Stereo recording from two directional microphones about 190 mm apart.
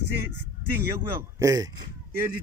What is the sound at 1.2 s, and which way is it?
Speech, 15° right (ahead or behind).